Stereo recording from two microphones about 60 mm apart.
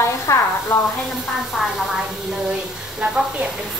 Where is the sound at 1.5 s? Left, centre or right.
Centre.